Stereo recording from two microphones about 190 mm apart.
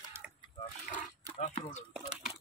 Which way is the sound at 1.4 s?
40° left (ahead or behind).